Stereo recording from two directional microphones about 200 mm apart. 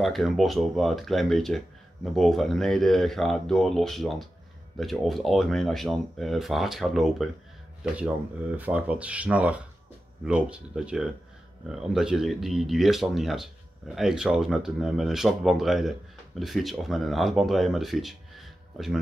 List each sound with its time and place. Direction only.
0.0 s speech: centre (ahead or behind)